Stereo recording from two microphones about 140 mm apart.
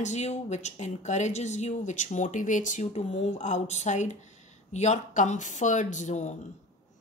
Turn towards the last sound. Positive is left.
turn(degrees=60)  # may be behind; listen again after turning